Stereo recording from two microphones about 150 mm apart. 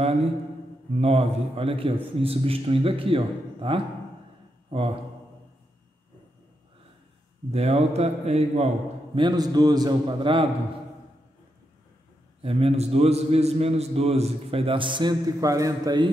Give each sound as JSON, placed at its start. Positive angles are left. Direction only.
{"t": 0.9, "sound": "a man's voice", "side_deg": -45}
{"t": 7.5, "sound": "speech", "side_deg": -45}
{"t": 9.1, "sound": "a man's voice", "side_deg": -30}
{"t": 12.4, "sound": "a man's voice", "side_deg": -40}